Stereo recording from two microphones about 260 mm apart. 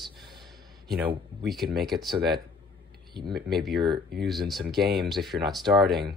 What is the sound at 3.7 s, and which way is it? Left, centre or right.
Speech, centre.